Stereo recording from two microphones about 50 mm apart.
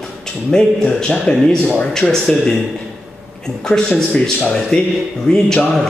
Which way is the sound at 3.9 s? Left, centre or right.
Left.